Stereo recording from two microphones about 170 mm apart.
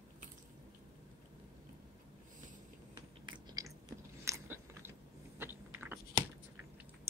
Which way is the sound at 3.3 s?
20° right (ahead or behind).